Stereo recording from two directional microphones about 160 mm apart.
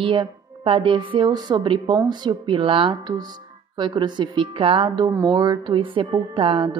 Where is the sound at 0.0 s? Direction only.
30° right (ahead or behind).